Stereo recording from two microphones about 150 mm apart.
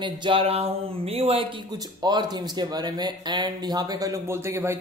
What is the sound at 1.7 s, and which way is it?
Speech, 30° right (ahead or behind).